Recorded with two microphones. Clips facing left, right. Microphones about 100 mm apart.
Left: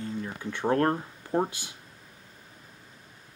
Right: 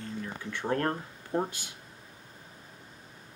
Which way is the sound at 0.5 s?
25° left (ahead or behind).